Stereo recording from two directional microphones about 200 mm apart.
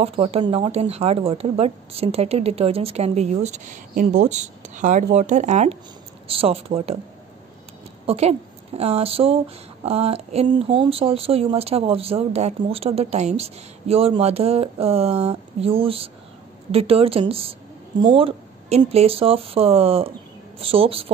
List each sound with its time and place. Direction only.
0.0 s speech: 30° right (ahead or behind)
8.1 s speech: 30° right (ahead or behind)